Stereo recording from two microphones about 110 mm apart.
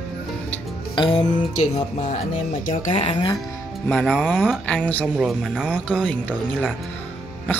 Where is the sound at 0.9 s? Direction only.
45° left (ahead or behind).